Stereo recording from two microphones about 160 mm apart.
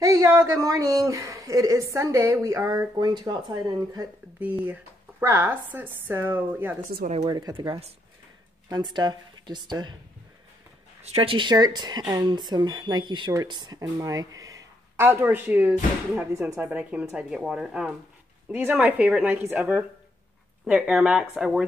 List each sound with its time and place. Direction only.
0.0 s speech: 20° right (ahead or behind)
4.4 s speech: 10° right (ahead or behind)
7.2 s speech: 30° right (ahead or behind)
11.0 s speech: 35° right (ahead or behind); by 21.6 s 5° right (ahead or behind)